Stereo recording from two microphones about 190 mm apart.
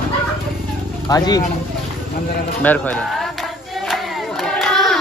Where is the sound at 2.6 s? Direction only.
10° left (ahead or behind).